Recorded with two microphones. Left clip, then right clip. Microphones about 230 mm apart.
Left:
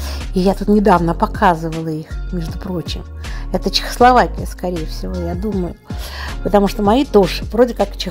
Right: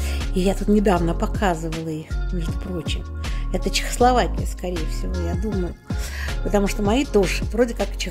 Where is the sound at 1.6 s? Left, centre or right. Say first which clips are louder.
Left 5 dB; centre.